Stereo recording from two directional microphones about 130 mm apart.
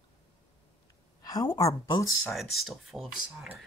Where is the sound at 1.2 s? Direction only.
30° left (ahead or behind).